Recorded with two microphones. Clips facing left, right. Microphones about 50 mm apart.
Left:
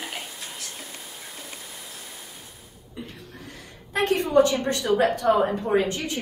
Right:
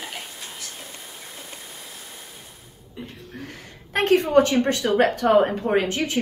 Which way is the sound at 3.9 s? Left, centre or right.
Right.